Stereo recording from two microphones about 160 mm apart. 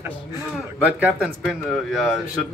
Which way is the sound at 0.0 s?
15° right (ahead or behind).